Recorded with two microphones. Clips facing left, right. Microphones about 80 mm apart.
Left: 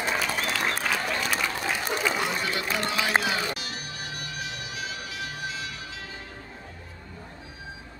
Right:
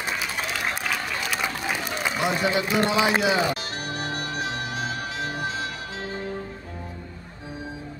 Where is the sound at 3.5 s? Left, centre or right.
Right.